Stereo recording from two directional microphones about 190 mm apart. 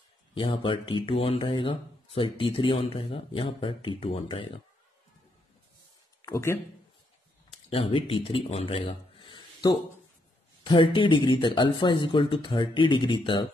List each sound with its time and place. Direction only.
0.3 s speech: 25° left (ahead or behind)
6.2 s speech: 15° left (ahead or behind)
7.5 s speech: 30° left (ahead or behind)